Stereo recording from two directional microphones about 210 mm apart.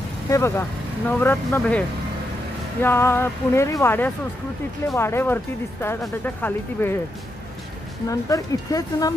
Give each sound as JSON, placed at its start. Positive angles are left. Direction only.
{"t": 0.3, "sound": "speech", "side_deg": 10}
{"t": 8.1, "sound": "speech", "side_deg": 15}